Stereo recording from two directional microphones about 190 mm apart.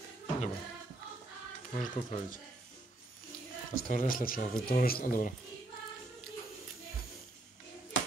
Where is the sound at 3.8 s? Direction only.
45° left (ahead or behind).